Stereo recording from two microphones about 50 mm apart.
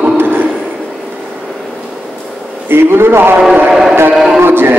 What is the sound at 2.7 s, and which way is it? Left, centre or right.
Speech, right.